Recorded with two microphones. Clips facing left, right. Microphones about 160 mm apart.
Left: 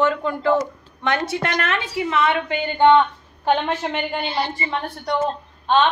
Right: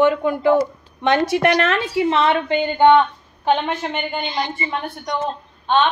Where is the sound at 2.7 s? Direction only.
15° right (ahead or behind).